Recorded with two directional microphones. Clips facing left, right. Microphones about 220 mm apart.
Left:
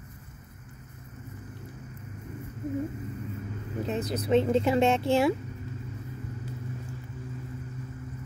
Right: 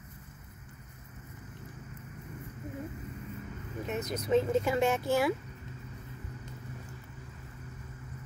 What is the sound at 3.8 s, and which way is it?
Speech, 30° left (ahead or behind).